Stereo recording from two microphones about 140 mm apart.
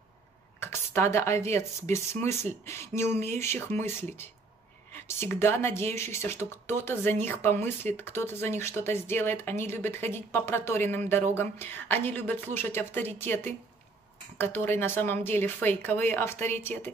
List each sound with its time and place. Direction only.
0.6 s speech: 20° left (ahead or behind)